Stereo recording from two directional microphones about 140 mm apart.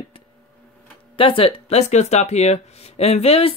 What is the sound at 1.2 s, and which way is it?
Speech, 40° left (ahead or behind).